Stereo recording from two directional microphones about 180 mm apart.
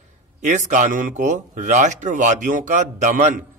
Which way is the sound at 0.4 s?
40° right (ahead or behind).